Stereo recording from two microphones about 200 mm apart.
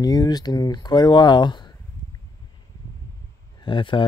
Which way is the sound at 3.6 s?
25° left (ahead or behind).